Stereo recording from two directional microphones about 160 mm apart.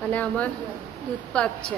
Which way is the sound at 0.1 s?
10° left (ahead or behind).